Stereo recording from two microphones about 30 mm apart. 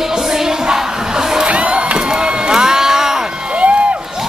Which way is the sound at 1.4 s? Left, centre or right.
Right.